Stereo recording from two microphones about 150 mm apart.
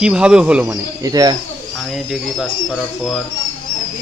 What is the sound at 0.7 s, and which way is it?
Speech, 25° right (ahead or behind).